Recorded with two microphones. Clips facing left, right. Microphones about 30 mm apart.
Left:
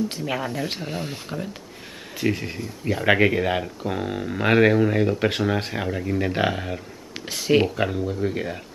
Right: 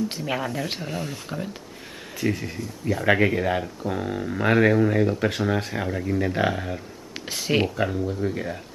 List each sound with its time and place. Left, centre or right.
0.1 s speech: centre
1.3 s speech: centre
2.1 s speech: left
7.2 s speech: centre
7.7 s speech: centre